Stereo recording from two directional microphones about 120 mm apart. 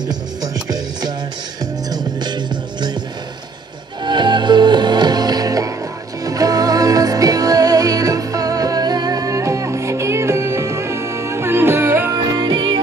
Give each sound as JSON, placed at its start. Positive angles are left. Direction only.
{"t": 0.1, "sound": "music", "side_deg": -35}
{"t": 4.0, "sound": "music", "side_deg": -40}
{"t": 12.4, "sound": "music", "side_deg": -40}